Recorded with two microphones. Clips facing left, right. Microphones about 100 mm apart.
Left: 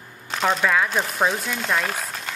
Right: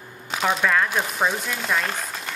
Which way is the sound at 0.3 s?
Centre (ahead or behind).